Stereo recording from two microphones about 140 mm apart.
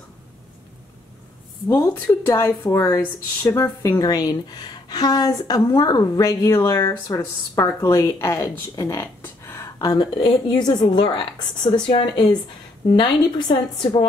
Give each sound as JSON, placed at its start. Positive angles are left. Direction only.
{"t": 1.8, "sound": "a woman's voice", "side_deg": 20}